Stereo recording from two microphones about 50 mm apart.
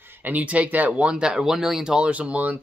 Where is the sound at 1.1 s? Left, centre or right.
Centre.